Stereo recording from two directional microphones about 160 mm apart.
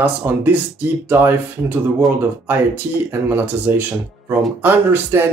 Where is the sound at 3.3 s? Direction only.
10° right (ahead or behind).